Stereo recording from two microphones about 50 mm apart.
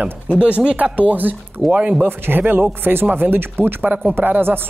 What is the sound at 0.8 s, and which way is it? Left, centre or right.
Speech, right.